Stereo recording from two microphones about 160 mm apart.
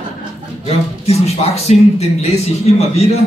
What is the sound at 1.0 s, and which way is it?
A man's voice, 40° left (ahead or behind).